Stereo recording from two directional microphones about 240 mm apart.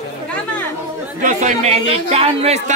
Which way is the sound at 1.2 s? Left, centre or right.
Right.